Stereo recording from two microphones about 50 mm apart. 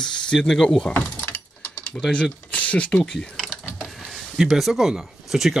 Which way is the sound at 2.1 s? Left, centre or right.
Left.